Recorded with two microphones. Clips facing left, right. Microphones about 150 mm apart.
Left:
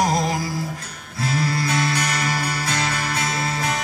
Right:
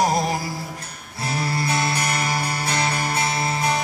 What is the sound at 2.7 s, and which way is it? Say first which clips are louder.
Music: right 1 dB; 30° right (ahead or behind).